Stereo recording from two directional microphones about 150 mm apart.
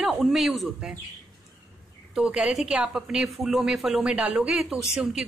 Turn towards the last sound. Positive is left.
turn(degrees=-5)  # may be behind; listen again after turning